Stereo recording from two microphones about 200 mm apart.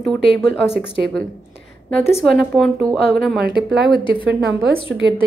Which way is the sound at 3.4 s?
55° right (ahead or behind).